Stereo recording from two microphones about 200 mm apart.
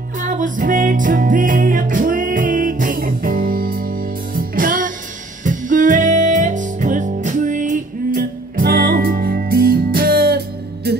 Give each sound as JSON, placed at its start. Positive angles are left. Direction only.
{"t": 0.2, "sound": "music", "side_deg": -40}